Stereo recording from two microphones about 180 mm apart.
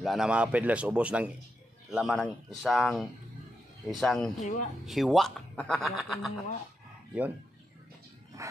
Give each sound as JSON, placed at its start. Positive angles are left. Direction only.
{"t": 0.0, "sound": "a man's voice", "side_deg": 0}
{"t": 4.4, "sound": "speech", "side_deg": 40}
{"t": 4.8, "sound": "speech", "side_deg": 0}
{"t": 8.4, "sound": "wild animals", "side_deg": -15}